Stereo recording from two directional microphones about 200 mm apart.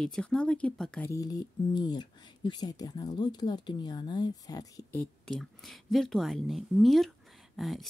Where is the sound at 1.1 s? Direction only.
20° left (ahead or behind).